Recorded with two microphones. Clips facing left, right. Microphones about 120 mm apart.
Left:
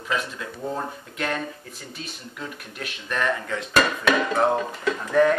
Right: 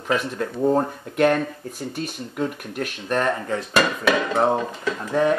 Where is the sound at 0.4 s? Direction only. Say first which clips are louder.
Right 10 dB; 50° right (ahead or behind).